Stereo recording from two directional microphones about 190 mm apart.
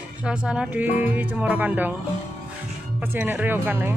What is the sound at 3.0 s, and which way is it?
Speech, 10° right (ahead or behind).